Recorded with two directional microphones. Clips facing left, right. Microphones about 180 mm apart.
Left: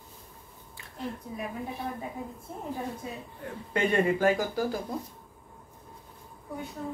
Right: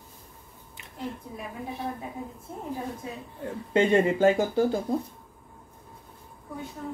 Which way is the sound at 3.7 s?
25° right (ahead or behind).